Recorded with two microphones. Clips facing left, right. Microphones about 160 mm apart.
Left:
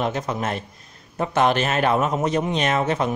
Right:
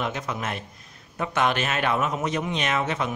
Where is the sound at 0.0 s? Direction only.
35° left (ahead or behind).